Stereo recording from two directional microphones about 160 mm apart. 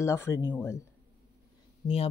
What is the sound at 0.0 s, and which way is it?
Speech, 15° left (ahead or behind).